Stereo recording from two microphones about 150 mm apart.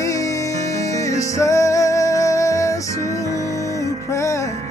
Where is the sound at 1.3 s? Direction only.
20° left (ahead or behind).